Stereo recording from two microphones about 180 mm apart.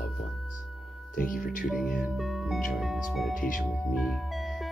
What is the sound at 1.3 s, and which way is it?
Speech, 50° left (ahead or behind).